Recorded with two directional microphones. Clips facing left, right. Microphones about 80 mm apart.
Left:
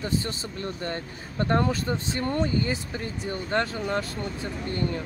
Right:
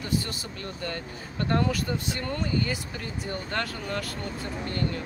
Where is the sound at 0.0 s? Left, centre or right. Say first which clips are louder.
Left 1 dB; left.